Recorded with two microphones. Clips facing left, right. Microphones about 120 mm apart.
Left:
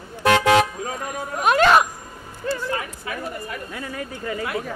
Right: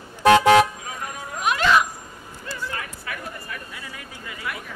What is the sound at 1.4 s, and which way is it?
Speech, 50° left (ahead or behind).